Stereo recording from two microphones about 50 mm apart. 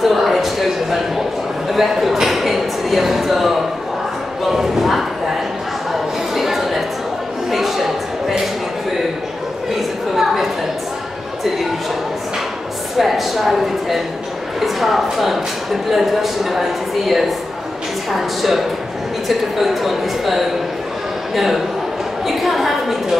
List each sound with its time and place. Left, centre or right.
0.0 s a man's voice: centre
6.3 s a sound: centre
9.8 s chatter: centre
12.9 s speech: centre
22.4 s speech: centre